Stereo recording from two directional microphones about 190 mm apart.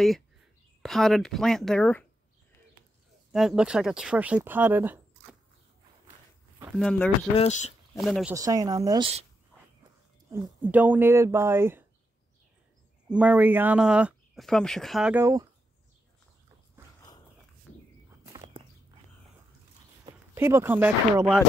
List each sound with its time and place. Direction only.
0.8 s speech: centre (ahead or behind)
3.3 s speech: 5° right (ahead or behind)
6.8 s speech: 5° left (ahead or behind)
7.3 s speech: 35° left (ahead or behind)
8.0 s speech: centre (ahead or behind)
8.4 s speech: 20° right (ahead or behind)
10.3 s speech: 10° right (ahead or behind)
13.1 s speech: 5° right (ahead or behind)
20.3 s speech: 15° right (ahead or behind)